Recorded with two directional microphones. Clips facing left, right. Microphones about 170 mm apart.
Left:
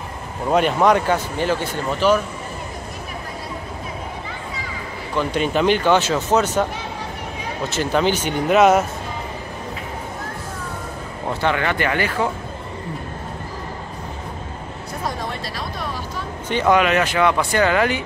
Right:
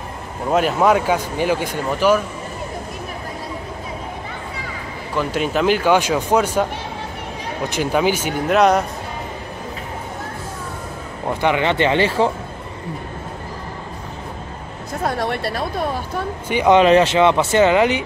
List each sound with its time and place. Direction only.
0.5 s speech: 5° right (ahead or behind)
5.1 s speech: 5° right (ahead or behind)
11.2 s speech: 15° right (ahead or behind)
15.0 s speech: 70° right (ahead or behind)
16.4 s speech: 10° right (ahead or behind)
16.7 s speech: 30° right (ahead or behind)